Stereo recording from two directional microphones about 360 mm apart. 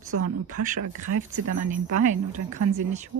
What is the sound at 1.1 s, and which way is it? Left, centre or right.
Speech, right.